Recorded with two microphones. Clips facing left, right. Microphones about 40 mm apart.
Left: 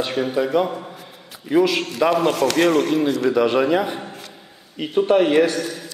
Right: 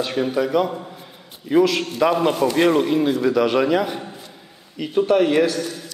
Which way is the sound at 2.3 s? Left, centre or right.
Left.